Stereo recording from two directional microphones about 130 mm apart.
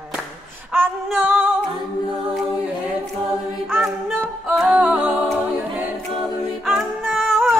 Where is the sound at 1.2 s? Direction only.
15° right (ahead or behind).